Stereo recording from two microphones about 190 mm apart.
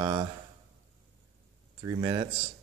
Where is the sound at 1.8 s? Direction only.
20° right (ahead or behind).